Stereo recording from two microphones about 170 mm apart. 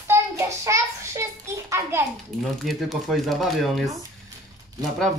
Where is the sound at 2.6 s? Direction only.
Centre (ahead or behind).